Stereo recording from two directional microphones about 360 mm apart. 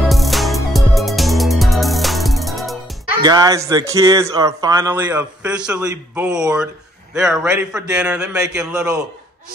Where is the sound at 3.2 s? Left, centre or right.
Centre.